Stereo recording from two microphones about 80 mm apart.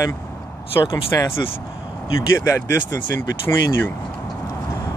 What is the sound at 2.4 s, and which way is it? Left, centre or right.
Speech, left.